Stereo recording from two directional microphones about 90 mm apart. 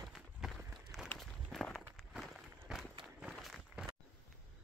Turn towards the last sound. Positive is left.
turn(degrees=-5)  # may be behind; listen again after turning